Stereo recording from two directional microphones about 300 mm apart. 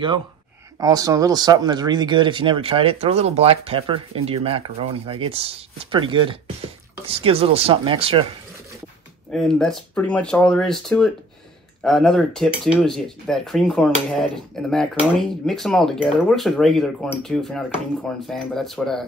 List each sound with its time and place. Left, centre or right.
0.7 s speech: centre
9.3 s speech: centre